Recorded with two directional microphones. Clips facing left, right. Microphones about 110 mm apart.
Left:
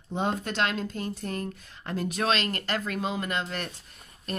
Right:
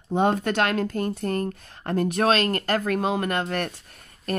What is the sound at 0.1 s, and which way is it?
Speech, 55° right (ahead or behind).